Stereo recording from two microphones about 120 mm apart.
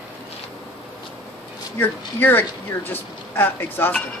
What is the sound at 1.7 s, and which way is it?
Speech, 15° left (ahead or behind).